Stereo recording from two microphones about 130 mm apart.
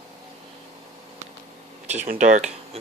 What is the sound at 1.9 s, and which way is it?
Speech, 70° right (ahead or behind).